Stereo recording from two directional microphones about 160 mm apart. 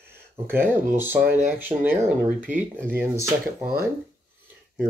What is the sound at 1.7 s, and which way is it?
Speech, 30° right (ahead or behind).